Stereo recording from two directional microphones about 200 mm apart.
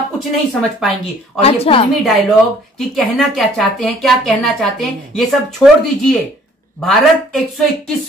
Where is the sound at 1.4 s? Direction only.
30° left (ahead or behind).